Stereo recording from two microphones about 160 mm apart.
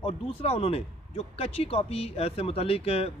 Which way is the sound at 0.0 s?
35° left (ahead or behind).